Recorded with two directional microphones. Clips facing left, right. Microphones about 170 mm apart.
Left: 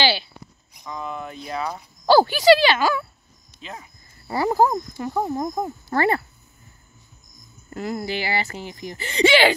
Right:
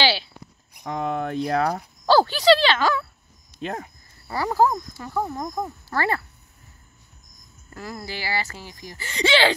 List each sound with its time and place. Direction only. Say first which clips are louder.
0.0 s a sound: left 1 dB; centre (ahead or behind)
0.8 s speech: right 6 dB; 75° right (ahead or behind)
2.0 s speech: left 2 dB; 10° left (ahead or behind)
3.6 s speech: right 8 dB; 50° right (ahead or behind)
4.3 s speech: left 2 dB; 15° left (ahead or behind)
7.7 s speech: left 7 dB; 20° left (ahead or behind)